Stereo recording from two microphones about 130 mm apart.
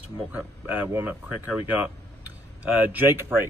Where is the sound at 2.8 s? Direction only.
15° right (ahead or behind).